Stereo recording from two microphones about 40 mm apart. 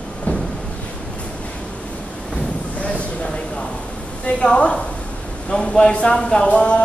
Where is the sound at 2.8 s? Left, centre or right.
Left.